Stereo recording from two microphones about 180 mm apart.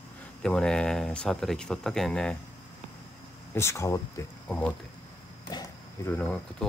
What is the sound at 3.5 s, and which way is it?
Speech, 15° left (ahead or behind).